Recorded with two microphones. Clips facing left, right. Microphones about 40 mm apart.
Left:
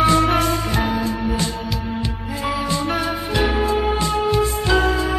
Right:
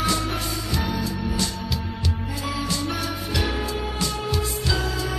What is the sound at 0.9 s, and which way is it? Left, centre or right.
Music, left.